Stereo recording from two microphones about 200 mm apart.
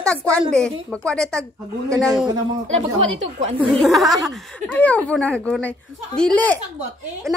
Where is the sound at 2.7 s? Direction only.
30° right (ahead or behind).